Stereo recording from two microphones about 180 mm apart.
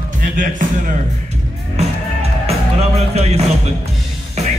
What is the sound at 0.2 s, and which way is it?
Speech, 45° right (ahead or behind).